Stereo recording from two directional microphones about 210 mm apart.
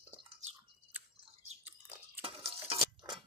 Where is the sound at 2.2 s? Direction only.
25° right (ahead or behind).